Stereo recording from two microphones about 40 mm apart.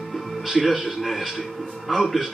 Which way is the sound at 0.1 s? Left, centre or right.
Centre.